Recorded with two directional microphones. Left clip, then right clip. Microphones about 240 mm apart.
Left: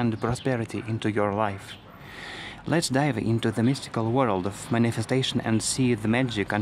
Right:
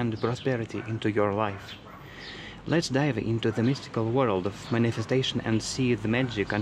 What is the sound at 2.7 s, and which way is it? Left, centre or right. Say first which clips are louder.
Speech: left 2 dB; centre.